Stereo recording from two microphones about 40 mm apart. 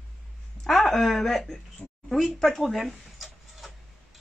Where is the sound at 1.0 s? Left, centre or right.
Centre.